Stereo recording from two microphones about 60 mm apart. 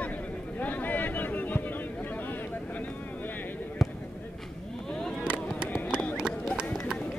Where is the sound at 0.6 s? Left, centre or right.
Left.